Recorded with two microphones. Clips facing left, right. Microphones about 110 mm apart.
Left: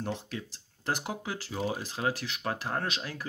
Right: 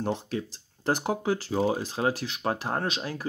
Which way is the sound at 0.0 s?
30° right (ahead or behind).